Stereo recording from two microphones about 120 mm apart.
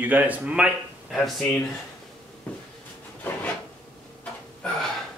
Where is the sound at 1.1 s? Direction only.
Centre (ahead or behind).